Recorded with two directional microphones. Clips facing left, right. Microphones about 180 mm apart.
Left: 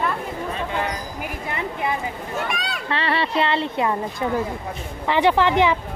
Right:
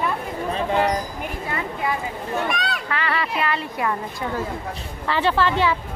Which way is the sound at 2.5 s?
Centre (ahead or behind).